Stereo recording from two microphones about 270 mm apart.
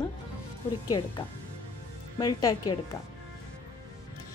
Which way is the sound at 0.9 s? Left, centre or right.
Centre.